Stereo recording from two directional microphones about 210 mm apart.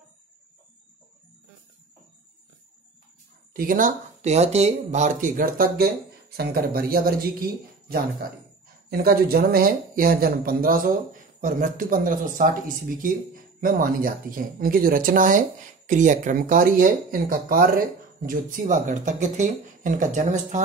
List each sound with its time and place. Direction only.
3.5 s speech: 40° right (ahead or behind)
8.9 s speech: 45° right (ahead or behind)